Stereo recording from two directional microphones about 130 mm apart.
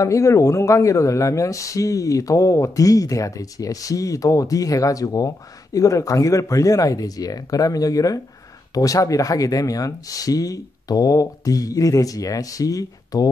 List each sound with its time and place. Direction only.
0.0 s speech: 25° left (ahead or behind)